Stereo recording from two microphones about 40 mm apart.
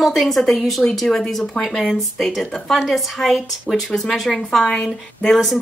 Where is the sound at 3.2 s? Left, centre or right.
Centre.